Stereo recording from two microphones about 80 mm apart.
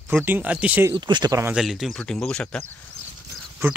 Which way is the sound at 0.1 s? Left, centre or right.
Right.